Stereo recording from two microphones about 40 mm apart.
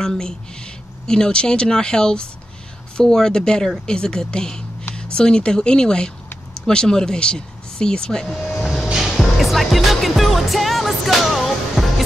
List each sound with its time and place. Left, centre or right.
0.0 s speech: centre
8.3 s vehicle: centre
9.0 s music: centre